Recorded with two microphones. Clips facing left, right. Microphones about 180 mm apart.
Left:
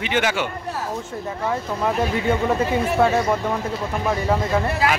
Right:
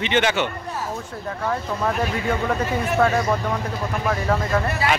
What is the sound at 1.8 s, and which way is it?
Speech, 15° left (ahead or behind).